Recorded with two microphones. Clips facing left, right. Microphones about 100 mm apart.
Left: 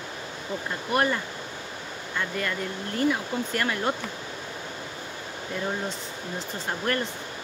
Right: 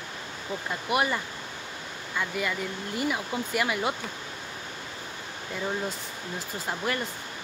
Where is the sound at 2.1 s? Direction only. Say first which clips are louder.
Even; 10° right (ahead or behind).